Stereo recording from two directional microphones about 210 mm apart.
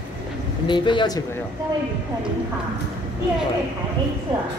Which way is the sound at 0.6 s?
20° left (ahead or behind).